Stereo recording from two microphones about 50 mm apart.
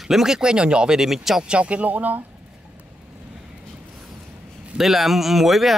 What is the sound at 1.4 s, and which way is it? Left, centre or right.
Speech, right.